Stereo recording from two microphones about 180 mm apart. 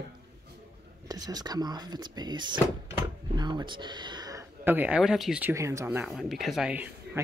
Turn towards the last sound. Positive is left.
turn(degrees=-10)  # may be behind; listen again after turning